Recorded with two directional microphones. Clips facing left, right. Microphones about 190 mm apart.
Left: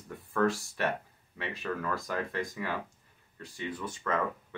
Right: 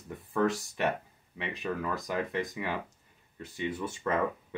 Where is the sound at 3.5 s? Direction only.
25° right (ahead or behind).